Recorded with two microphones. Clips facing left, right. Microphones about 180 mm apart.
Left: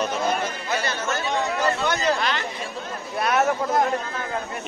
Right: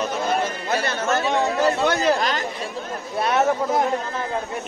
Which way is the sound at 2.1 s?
40° right (ahead or behind).